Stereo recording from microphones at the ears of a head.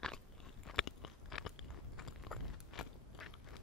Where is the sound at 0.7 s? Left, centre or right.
Left.